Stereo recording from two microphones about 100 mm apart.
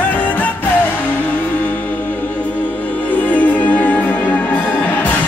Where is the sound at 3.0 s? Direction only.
15° left (ahead or behind).